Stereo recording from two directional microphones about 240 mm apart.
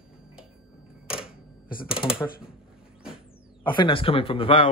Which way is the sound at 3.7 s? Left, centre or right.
Left.